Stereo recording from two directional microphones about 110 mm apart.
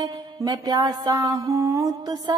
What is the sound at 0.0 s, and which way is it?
Mantra, 35° right (ahead or behind).